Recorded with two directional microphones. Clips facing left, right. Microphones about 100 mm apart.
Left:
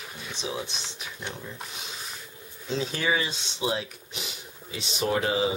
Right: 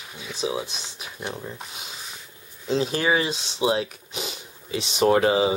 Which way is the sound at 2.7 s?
60° right (ahead or behind).